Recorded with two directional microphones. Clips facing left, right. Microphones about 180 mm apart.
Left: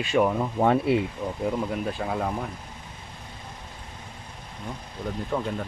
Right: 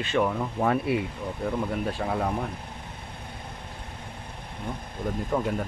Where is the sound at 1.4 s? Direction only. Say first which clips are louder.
Even; centre (ahead or behind).